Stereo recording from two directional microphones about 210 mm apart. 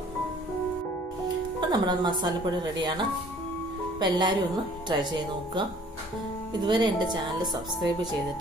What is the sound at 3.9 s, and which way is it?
Speech, 20° right (ahead or behind).